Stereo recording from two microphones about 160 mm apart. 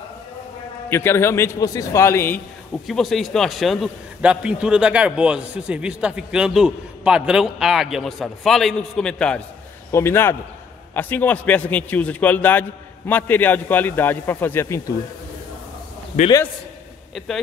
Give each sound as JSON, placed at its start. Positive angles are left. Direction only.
{"t": 0.8, "sound": "a man's voice", "side_deg": 15}
{"t": 2.9, "sound": "a man's voice", "side_deg": 0}
{"t": 9.8, "sound": "a man's voice", "side_deg": 15}
{"t": 16.1, "sound": "a man's voice", "side_deg": 55}